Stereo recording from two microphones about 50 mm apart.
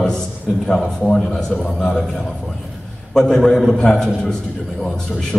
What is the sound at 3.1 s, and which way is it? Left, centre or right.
A man's voice, centre.